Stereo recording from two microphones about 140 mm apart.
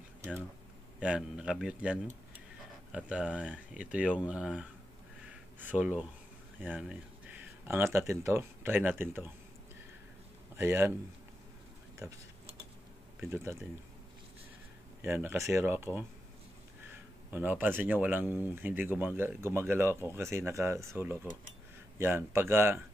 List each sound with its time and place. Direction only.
0.9 s speech: 5° right (ahead or behind)
5.2 s a sound: 10° right (ahead or behind)
8.1 s speech: 20° right (ahead or behind)
10.5 s speech: 15° right (ahead or behind)
12.0 s speech: 25° right (ahead or behind)
13.2 s speech: 15° right (ahead or behind)
15.0 s speech: 15° right (ahead or behind)